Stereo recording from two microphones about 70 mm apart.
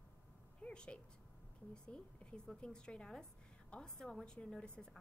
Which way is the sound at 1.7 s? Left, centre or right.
Centre.